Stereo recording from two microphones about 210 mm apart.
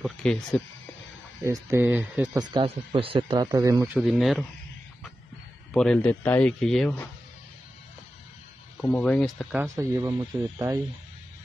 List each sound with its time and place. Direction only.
0.0 s a man's voice: 5° left (ahead or behind)
1.4 s speech: 15° right (ahead or behind)
2.5 s speech: 25° right (ahead or behind)
3.8 s a man's voice: centre (ahead or behind)
5.7 s a man's voice: 5° left (ahead or behind)
8.8 s a man's voice: 5° left (ahead or behind)
9.8 s speech: 15° right (ahead or behind)